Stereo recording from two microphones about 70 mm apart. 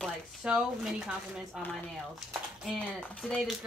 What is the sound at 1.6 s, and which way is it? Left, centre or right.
Speech, centre.